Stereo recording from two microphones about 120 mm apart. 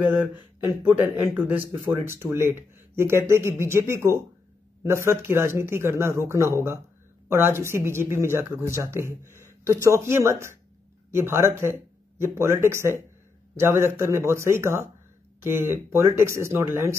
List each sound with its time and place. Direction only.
1.0 s a man's voice: 15° right (ahead or behind)